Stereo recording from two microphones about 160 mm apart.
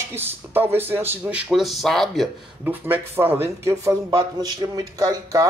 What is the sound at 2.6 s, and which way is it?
Speech, 10° right (ahead or behind).